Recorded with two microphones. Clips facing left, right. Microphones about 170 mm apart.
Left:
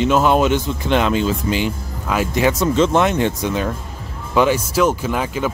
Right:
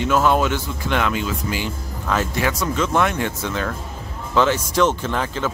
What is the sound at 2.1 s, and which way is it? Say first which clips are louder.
Speech: left 4 dB; 15° left (ahead or behind).